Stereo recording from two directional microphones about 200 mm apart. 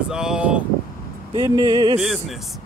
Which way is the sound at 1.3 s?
20° right (ahead or behind).